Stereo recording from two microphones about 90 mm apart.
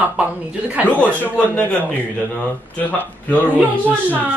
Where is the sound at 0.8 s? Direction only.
15° left (ahead or behind).